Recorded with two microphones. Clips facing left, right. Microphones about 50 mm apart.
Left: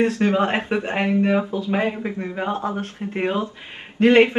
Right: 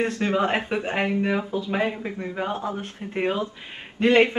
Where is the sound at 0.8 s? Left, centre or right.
Centre.